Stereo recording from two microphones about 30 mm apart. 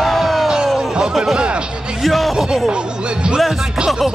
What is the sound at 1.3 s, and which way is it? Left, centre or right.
Music, right.